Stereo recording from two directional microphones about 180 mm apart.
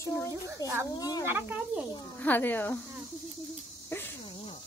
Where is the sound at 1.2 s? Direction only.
10° right (ahead or behind).